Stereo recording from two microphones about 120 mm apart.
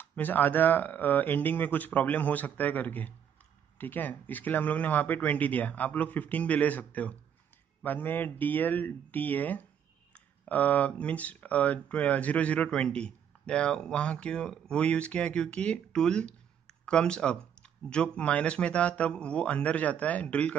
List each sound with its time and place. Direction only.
0.0 s speech: 15° left (ahead or behind)